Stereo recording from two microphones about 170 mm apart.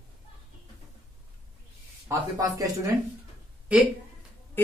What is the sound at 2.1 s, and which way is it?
Speech, 20° right (ahead or behind).